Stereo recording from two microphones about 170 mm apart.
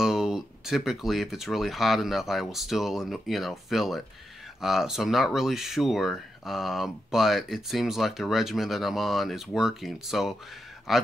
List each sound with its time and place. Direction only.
0.0 s speech: 5° right (ahead or behind)